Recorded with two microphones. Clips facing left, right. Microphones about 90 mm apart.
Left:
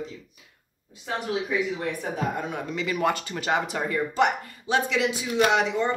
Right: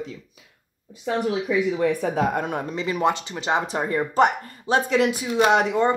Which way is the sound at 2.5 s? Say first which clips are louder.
Right 3 dB; 30° right (ahead or behind).